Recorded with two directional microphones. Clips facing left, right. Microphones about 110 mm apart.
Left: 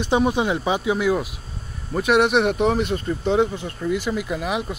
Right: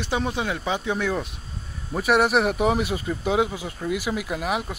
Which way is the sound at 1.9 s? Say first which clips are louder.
Left 2 dB; centre (ahead or behind).